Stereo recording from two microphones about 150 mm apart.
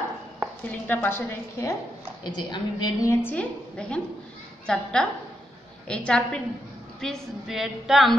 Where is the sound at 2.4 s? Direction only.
30° left (ahead or behind).